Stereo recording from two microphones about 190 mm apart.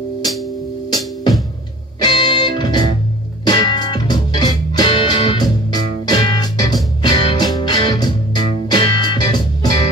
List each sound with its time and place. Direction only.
2.0 s music: 20° left (ahead or behind)